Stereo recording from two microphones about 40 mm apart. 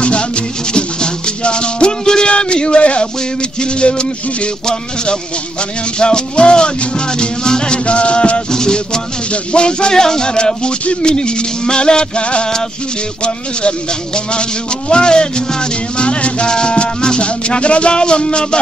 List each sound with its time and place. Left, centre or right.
0.0 s music: left